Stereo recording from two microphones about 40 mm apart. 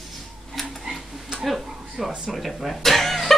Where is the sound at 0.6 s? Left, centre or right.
Centre.